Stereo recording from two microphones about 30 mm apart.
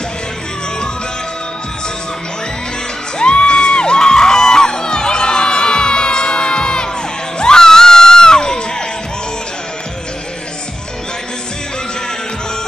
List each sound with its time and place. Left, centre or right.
3.2 s music: left